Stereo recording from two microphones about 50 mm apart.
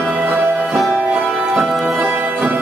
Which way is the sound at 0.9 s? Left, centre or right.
Right.